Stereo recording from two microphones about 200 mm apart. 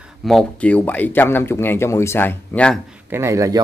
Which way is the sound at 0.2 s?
Centre (ahead or behind).